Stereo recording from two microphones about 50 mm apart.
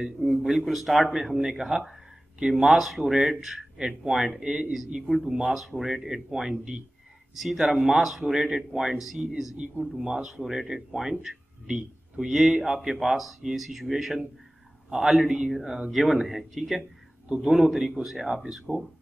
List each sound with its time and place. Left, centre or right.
0.4 s speech: centre
1.9 s a sound: centre
2.5 s speech: centre
5.0 s speech: centre
10.4 s a man's voice: centre